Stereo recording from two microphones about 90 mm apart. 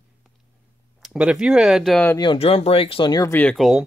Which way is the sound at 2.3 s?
90° left.